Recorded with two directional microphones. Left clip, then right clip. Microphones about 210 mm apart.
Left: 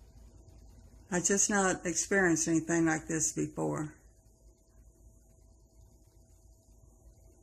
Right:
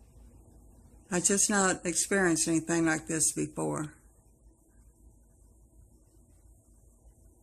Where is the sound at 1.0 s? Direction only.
20° right (ahead or behind).